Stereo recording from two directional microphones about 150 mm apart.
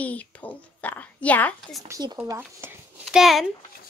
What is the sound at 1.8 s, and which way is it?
Speech, 25° right (ahead or behind).